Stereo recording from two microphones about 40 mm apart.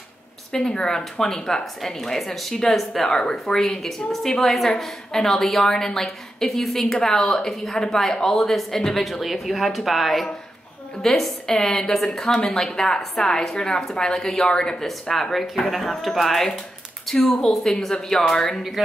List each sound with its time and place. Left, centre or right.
0.5 s a woman's voice: centre
3.1 s a woman's voice: centre
3.6 s a woman's voice: centre
9.2 s speech: centre
11.0 s a woman's voice: centre